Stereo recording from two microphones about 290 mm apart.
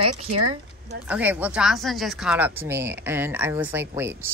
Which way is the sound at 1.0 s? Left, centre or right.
Centre.